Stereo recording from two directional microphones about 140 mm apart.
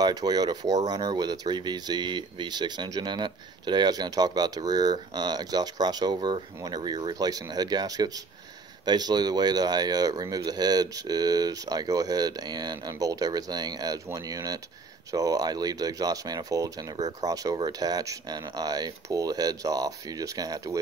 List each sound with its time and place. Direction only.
0.0 s speech: 30° right (ahead or behind)